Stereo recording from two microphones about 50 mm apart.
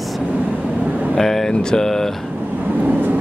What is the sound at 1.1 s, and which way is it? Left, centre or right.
Speech, centre.